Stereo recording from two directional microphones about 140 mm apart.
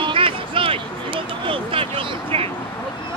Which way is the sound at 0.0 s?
40° right (ahead or behind).